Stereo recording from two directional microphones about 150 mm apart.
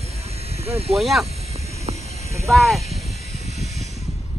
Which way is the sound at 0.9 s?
Centre (ahead or behind).